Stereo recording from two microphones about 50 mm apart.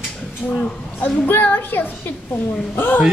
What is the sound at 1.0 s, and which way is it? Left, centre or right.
A child's voice, left.